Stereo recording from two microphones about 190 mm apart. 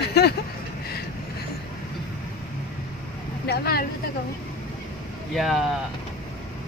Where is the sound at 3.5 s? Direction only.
55° left (ahead or behind).